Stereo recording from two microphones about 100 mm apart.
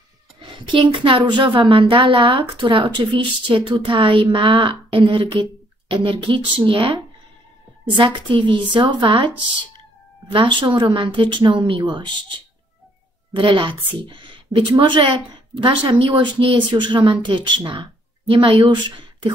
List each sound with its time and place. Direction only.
0.4 s a woman's voice: 55° right (ahead or behind)
10.3 s a woman's voice: 55° right (ahead or behind)